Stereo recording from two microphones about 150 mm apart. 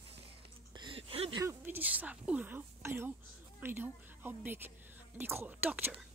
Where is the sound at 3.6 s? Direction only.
15° right (ahead or behind).